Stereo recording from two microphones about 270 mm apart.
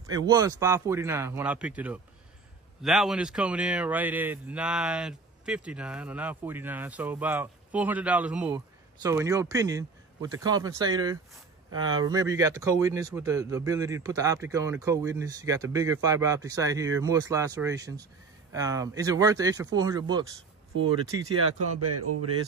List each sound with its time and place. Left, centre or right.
0.0 s a man's voice: centre
21.5 s speech: right